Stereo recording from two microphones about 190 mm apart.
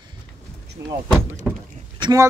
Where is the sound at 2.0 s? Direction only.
20° right (ahead or behind).